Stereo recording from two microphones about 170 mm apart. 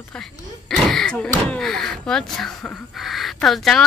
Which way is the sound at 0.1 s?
5° left (ahead or behind).